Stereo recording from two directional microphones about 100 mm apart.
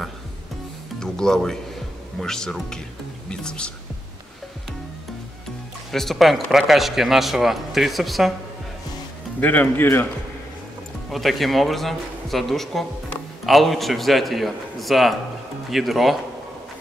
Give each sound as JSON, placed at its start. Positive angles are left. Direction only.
{"t": 0.9, "sound": "speech", "side_deg": 5}
{"t": 5.9, "sound": "speech", "side_deg": 0}
{"t": 9.4, "sound": "speech", "side_deg": 15}
{"t": 11.1, "sound": "speech", "side_deg": 0}